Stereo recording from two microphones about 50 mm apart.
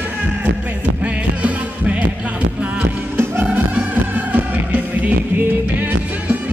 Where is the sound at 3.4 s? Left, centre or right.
Right.